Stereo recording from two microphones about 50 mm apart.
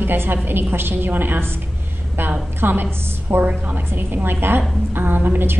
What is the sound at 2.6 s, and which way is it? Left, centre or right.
A woman's voice, right.